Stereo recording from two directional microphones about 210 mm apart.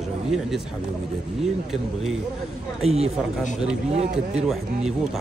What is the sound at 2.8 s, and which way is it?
Speech, 30° right (ahead or behind).